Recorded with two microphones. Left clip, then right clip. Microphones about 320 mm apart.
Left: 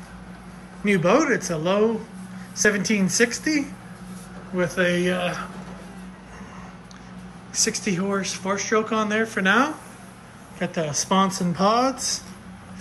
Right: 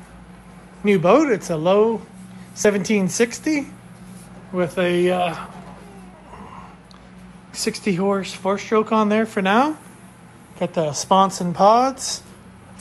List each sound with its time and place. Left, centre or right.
0.9 s speech: centre
7.8 s speech: centre
10.8 s speech: centre